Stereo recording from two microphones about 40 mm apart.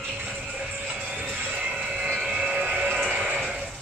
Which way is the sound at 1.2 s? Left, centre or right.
Right.